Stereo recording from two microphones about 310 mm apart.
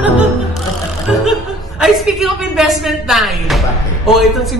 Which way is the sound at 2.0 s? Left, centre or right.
Centre.